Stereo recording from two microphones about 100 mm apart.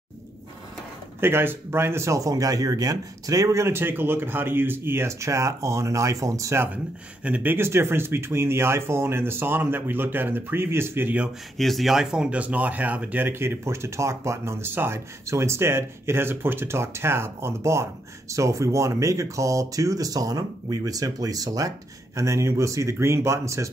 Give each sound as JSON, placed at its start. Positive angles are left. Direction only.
{"t": 1.2, "sound": "speech", "side_deg": -20}
{"t": 7.2, "sound": "speech", "side_deg": -15}
{"t": 11.5, "sound": "speech", "side_deg": 0}